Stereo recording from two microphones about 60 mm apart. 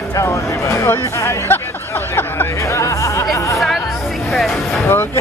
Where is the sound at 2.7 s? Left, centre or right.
Left.